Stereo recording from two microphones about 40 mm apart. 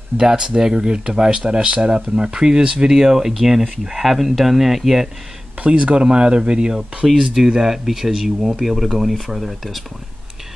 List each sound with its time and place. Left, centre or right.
0.2 s speech: right
5.6 s speech: right
7.2 s speech: centre